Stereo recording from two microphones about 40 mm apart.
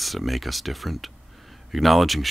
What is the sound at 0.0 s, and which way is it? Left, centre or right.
Speech, centre.